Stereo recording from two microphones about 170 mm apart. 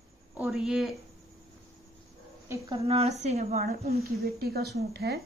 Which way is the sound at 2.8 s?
35° right (ahead or behind).